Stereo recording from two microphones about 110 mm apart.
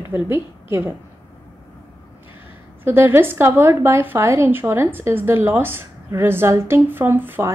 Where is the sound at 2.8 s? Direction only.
20° right (ahead or behind).